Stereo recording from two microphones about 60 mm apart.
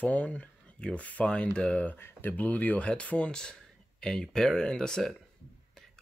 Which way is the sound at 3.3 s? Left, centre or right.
Centre.